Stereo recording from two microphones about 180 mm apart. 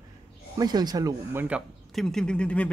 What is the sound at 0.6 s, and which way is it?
Speech, 20° right (ahead or behind).